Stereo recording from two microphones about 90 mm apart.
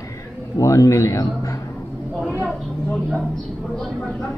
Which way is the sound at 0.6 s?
40° left (ahead or behind).